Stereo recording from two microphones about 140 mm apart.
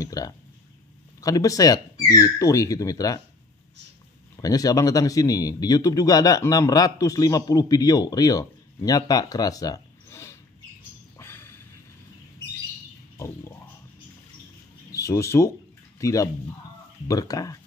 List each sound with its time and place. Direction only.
0.0 s a man's voice: 25° left (ahead or behind)
4.4 s a man's voice: 25° left (ahead or behind)
11.1 s a sound: 15° left (ahead or behind)
14.9 s a man's voice: 20° left (ahead or behind)